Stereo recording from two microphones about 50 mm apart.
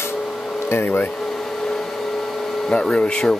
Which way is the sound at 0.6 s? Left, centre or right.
Left.